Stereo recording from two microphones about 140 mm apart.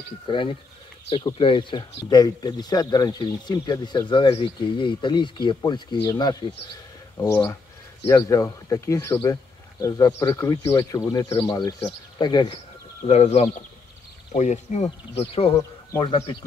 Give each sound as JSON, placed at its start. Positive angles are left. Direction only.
{"t": 0.3, "sound": "speech", "side_deg": 35}
{"t": 8.1, "sound": "speech", "side_deg": 25}
{"t": 13.0, "sound": "speech", "side_deg": 50}